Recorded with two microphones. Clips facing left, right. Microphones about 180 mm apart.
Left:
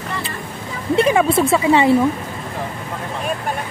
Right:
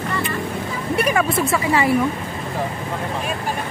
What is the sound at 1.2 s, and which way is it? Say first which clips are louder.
Speech: left 5 dB; 30° left (ahead or behind).